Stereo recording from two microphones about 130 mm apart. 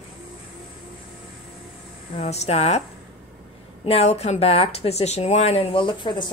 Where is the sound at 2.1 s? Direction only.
55° left (ahead or behind).